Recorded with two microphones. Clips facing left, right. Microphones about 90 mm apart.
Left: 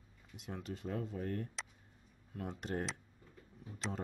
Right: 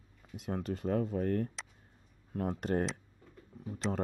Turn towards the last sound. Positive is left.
turn(degrees=-55)  # may be behind; listen again after turning